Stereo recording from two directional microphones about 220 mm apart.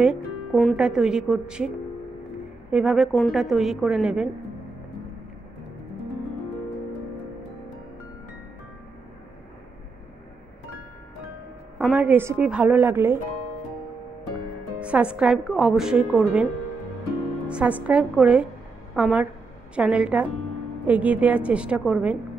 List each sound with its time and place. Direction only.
0.0 s a woman's voice: 5° right (ahead or behind)
2.7 s a woman's voice: 5° right (ahead or behind)
11.8 s a woman's voice: 5° right (ahead or behind)
14.8 s a woman's voice: 5° right (ahead or behind)
17.5 s a woman's voice: 5° right (ahead or behind)